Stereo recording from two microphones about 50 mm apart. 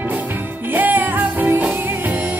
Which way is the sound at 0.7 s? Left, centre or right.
Right.